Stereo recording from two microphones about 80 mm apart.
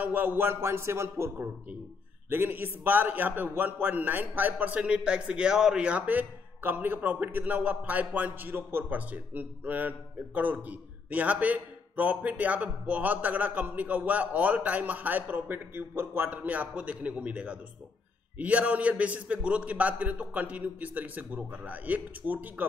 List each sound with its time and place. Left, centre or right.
0.0 s a man's voice: right